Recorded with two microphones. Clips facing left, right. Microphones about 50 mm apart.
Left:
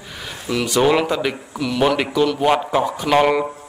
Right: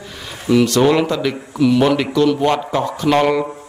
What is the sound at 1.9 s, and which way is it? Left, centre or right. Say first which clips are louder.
A man's voice: right 3 dB; centre.